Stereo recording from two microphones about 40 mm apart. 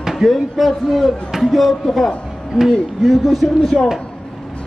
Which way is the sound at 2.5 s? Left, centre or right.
Centre.